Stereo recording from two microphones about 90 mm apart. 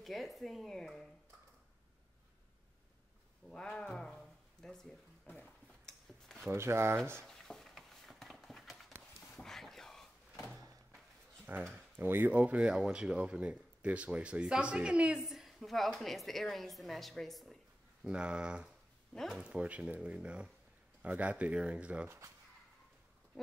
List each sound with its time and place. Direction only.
0.0 s speech: centre (ahead or behind)
3.4 s speech: 5° left (ahead or behind)
5.2 s a sound: 20° left (ahead or behind)
5.9 s a sound: 5° left (ahead or behind)
6.5 s speech: 30° right (ahead or behind)
7.2 s horse: 5° left (ahead or behind)
9.3 s a sound: 5° left (ahead or behind)
11.5 s speech: 20° right (ahead or behind); by 17.6 s centre (ahead or behind)
18.0 s speech: 10° right (ahead or behind)
19.1 s speech: 5° left (ahead or behind)
19.4 s speech: 15° right (ahead or behind)